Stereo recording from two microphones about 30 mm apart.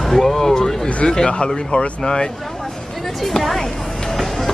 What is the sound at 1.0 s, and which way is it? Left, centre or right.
Speech, left.